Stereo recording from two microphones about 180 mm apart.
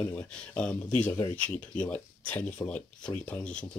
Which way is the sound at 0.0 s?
10° left (ahead or behind).